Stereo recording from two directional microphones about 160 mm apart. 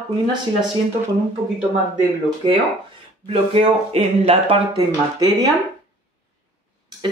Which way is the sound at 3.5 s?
40° right (ahead or behind).